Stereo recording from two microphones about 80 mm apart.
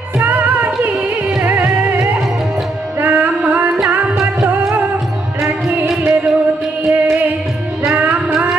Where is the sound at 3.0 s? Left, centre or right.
Right.